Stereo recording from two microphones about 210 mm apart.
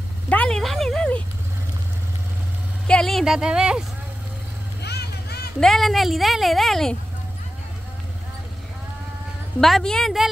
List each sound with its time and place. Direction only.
0.3 s a sound: 5° left (ahead or behind)
2.9 s speech: centre (ahead or behind)
4.8 s vehicle: 50° left (ahead or behind)
5.6 s speech: centre (ahead or behind)
9.6 s speech: centre (ahead or behind)